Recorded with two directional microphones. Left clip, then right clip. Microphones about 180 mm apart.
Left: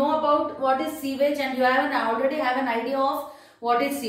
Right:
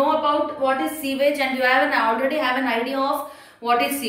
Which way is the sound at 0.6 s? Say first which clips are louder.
Right 2 dB; 15° right (ahead or behind).